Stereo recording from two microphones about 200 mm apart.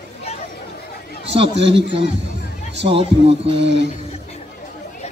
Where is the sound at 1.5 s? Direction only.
60° right (ahead or behind).